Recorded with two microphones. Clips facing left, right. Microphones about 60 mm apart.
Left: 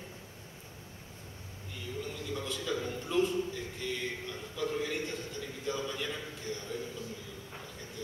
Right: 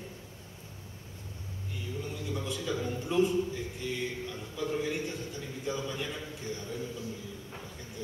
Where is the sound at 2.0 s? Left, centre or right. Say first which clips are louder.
Right 2 dB; centre.